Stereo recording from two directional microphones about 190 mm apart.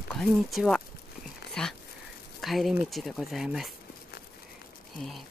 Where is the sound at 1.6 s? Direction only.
5° left (ahead or behind).